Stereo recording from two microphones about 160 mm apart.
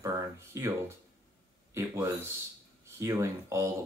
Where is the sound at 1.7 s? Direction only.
15° right (ahead or behind).